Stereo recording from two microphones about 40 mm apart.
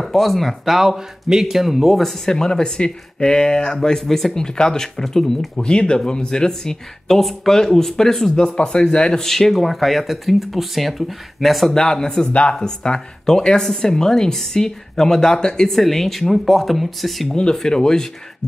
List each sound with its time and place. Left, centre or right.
0.0 s speech: centre
0.7 s speech: centre
2.0 s speech: centre
4.0 s speech: centre
4.4 s speech: centre
5.6 s speech: left
7.1 s speech: centre; by 9.2 s left
9.2 s speech: centre
11.7 s speech: centre
12.3 s speech: left; by 17.4 s centre
17.6 s speech: centre